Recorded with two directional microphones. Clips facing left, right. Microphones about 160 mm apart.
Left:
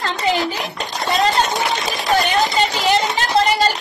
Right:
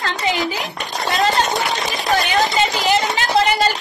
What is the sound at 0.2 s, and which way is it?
Speech, 35° left (ahead or behind).